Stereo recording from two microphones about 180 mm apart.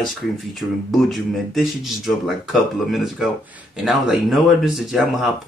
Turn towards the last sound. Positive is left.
turn(degrees=0)  # may be behind; listen again after turning